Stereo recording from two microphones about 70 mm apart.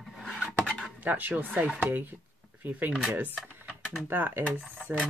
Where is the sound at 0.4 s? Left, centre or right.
Left.